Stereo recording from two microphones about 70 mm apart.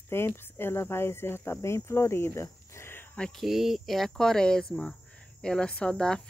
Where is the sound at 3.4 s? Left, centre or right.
Centre.